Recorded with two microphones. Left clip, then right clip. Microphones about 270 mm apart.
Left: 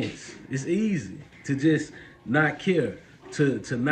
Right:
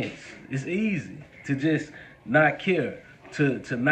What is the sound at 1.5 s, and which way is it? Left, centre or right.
A man's voice, centre.